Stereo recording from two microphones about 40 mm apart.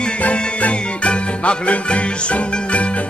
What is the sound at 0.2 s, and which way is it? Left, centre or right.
Music, left.